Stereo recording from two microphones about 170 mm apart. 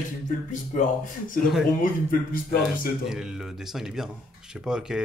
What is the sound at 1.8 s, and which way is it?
Speech, 55° left (ahead or behind).